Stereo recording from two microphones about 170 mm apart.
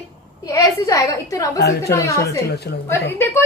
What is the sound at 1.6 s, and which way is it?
Speech, 70° left (ahead or behind).